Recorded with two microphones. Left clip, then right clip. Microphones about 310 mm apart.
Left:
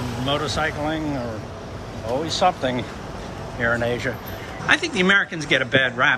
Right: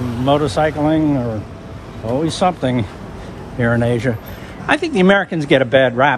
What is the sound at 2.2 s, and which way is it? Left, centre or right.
Speech, centre.